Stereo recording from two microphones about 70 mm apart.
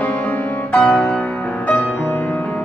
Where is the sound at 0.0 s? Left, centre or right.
Left.